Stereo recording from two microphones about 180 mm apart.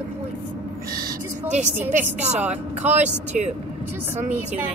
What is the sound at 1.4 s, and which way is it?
Speech, 40° right (ahead or behind).